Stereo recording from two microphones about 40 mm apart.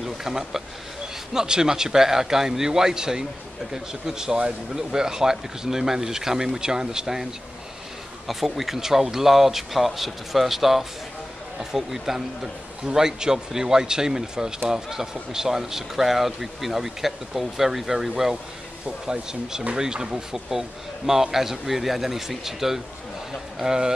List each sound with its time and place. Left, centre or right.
0.0 s speech: centre
8.3 s speech: centre